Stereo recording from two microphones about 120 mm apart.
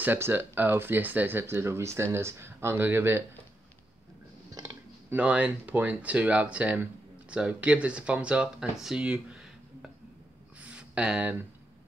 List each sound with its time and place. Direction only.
0.0 s speech: 15° right (ahead or behind)
5.1 s speech: 10° right (ahead or behind)
10.6 s a sound: 10° right (ahead or behind)